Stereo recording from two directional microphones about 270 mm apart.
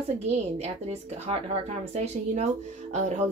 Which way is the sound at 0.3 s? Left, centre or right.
Right.